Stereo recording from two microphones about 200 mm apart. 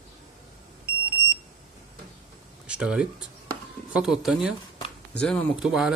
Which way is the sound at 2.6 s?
5° right (ahead or behind).